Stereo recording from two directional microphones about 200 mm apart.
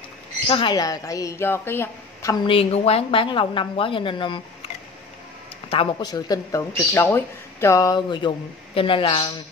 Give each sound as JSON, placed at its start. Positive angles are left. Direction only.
{"t": 0.5, "sound": "a woman's voice", "side_deg": 25}
{"t": 5.7, "sound": "a woman's voice", "side_deg": 25}